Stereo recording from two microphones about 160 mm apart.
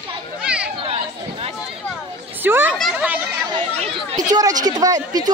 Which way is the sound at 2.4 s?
15° right (ahead or behind).